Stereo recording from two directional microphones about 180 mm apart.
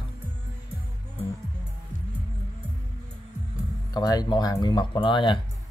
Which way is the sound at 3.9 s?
20° left (ahead or behind).